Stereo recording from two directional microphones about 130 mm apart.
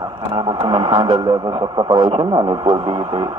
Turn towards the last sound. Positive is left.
turn(degrees=-30)  # may be behind; listen again after turning